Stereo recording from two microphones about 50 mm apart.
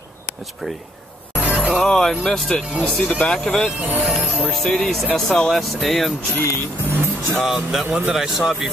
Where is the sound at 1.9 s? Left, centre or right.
Centre.